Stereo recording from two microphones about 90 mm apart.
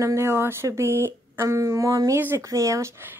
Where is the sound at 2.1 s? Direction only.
25° right (ahead or behind).